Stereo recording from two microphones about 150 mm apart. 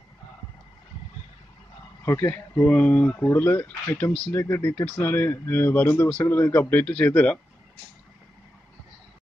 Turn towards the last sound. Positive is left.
turn(degrees=10)  # may be behind; listen again after turning